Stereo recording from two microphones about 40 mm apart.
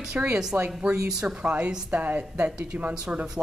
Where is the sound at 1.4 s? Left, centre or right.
Right.